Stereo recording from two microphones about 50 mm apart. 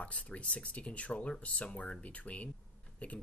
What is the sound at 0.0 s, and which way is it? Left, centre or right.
Speech, left.